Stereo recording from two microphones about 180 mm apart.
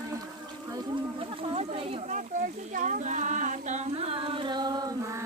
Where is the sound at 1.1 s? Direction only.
30° right (ahead or behind).